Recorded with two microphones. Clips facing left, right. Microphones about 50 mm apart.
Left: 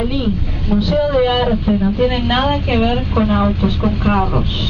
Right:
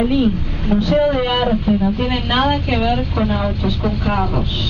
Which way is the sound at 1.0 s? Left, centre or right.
Centre.